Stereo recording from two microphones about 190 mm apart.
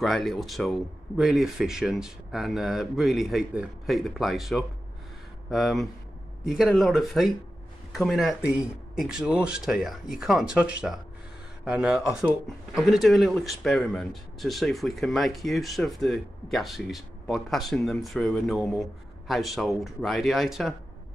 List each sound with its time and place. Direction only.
0.0 s speech: centre (ahead or behind)